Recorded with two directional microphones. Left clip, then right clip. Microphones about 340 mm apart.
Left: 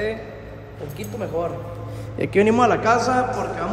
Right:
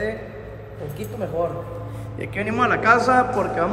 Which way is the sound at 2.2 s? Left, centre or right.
Left.